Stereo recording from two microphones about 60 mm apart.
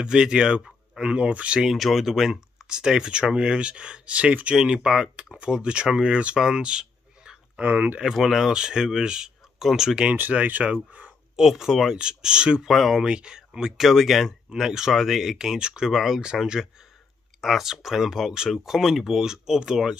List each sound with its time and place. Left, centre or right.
0.0 s speech: centre
1.7 s speech: centre
7.6 s speech: right
8.0 s speech: centre
10.1 s speech: right
11.3 s speech: centre
12.6 s speech: centre
13.0 s speech: centre
17.4 s speech: centre